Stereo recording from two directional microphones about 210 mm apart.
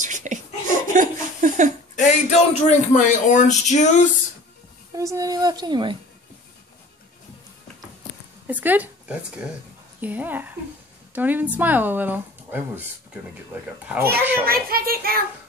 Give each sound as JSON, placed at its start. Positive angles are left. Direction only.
{"t": 0.0, "sound": "laughter", "side_deg": -35}
{"t": 2.0, "sound": "a man's voice", "side_deg": 35}
{"t": 4.9, "sound": "speech", "side_deg": -15}
{"t": 8.5, "sound": "speech", "side_deg": -5}
{"t": 14.4, "sound": "a child's voice", "side_deg": -45}